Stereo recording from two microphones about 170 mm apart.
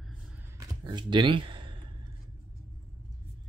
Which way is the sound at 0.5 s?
25° right (ahead or behind).